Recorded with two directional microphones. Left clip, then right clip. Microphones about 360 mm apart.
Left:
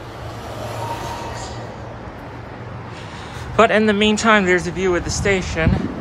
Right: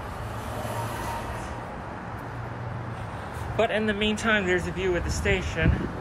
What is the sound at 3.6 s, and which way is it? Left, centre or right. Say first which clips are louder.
Speech: left 11 dB; centre.